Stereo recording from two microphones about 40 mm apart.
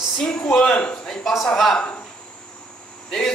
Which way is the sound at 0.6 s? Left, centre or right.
Left.